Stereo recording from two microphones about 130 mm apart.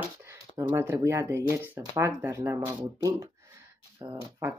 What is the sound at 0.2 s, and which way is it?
Speech, 20° right (ahead or behind).